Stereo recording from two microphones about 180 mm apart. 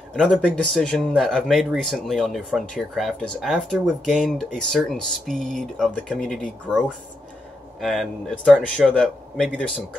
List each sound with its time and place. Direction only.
0.1 s speech: 5° left (ahead or behind)